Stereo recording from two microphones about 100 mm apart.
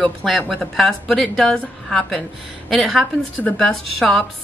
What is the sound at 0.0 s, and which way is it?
A woman's voice, 5° left (ahead or behind).